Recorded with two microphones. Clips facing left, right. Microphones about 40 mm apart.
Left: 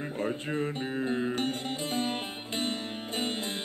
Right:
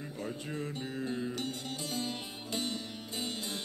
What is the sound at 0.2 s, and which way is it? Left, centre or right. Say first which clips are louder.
Music: left 7 dB; left.